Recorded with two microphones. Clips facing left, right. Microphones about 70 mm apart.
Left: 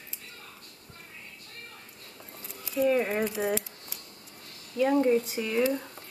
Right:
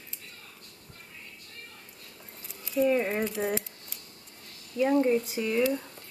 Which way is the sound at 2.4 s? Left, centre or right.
Centre.